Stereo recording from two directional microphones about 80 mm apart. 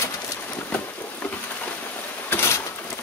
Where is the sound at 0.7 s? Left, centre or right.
Left.